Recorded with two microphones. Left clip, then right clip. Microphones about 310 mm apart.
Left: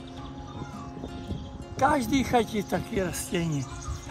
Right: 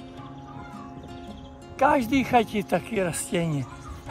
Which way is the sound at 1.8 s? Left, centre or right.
Right.